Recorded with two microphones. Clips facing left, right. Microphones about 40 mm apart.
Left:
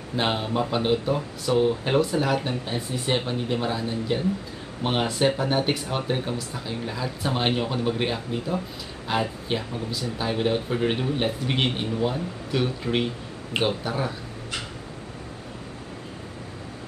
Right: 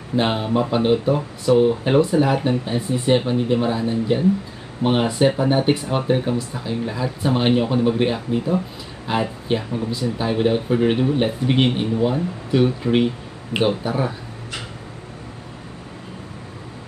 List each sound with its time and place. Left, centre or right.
0.1 s speech: centre